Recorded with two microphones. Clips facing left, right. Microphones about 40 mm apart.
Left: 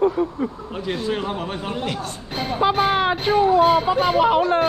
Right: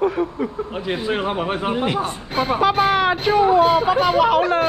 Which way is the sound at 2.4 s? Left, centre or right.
Centre.